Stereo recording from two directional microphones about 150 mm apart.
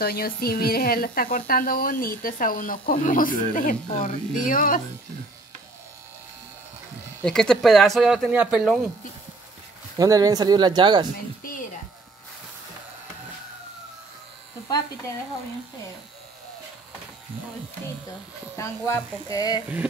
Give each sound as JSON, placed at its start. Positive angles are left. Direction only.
{"t": 0.0, "sound": "speech", "side_deg": 90}
{"t": 7.2, "sound": "speech", "side_deg": 5}
{"t": 9.9, "sound": "speech", "side_deg": -25}
{"t": 18.6, "sound": "speech", "side_deg": 20}